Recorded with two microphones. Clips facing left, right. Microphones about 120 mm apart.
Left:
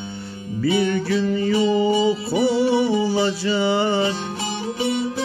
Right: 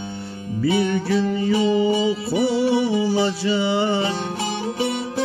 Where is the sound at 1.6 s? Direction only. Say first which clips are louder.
Left 1 dB; 35° left (ahead or behind).